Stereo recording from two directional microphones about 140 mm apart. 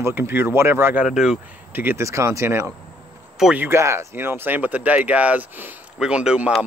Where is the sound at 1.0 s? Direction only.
5° right (ahead or behind).